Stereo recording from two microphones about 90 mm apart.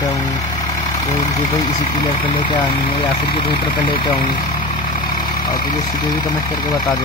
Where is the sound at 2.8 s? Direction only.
65° left (ahead or behind).